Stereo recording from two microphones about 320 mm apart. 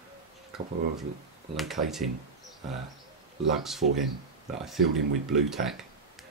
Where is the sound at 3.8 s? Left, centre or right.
Right.